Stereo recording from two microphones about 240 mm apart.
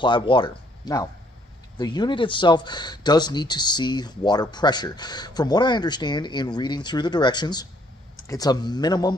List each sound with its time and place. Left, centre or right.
0.0 s speech: centre